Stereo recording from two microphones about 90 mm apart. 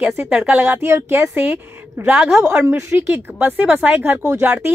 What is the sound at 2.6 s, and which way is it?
Speech, 25° right (ahead or behind).